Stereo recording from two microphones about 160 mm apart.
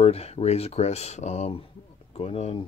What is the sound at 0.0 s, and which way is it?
Speech, 40° left (ahead or behind).